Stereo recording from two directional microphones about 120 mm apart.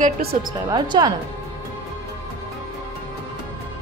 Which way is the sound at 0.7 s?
35° right (ahead or behind).